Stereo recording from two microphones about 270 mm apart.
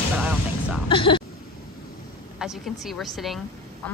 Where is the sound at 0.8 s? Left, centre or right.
Centre.